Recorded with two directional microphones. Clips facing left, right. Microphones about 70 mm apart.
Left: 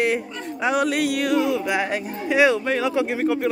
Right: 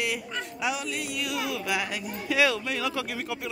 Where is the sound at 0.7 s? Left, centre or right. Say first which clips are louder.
Left 12 dB; left.